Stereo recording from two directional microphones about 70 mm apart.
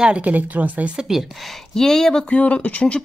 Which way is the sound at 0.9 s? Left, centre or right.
Centre.